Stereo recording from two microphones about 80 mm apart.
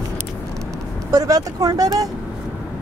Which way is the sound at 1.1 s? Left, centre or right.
Right.